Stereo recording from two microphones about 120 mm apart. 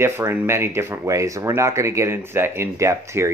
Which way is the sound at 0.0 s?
20° right (ahead or behind).